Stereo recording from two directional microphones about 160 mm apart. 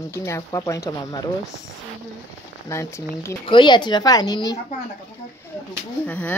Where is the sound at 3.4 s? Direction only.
30° left (ahead or behind).